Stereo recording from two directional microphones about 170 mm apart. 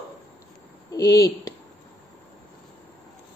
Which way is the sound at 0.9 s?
20° left (ahead or behind).